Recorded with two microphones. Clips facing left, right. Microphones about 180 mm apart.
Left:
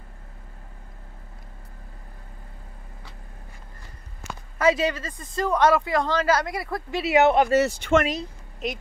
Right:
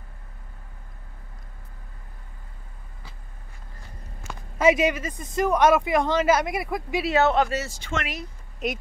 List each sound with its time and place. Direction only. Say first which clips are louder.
4.6 s a man's voice: right 2 dB; 20° right (ahead or behind)
7.1 s speech: left 3 dB; 15° left (ahead or behind)
7.5 s speech: left 10 dB; 60° left (ahead or behind)
8.6 s speech: right 2 dB; centre (ahead or behind)